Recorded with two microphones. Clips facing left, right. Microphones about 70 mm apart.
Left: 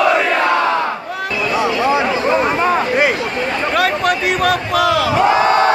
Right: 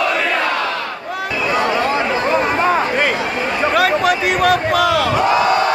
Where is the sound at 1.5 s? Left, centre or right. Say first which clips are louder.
Even; right.